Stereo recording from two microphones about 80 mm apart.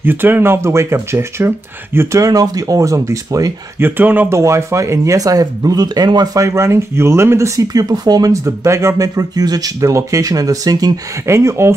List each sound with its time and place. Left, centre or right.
0.0 s speech: right
2.0 s speech: right
3.8 s speech: right
4.3 s speech: right
6.4 s speech: right
8.5 s speech: right
11.2 s speech: right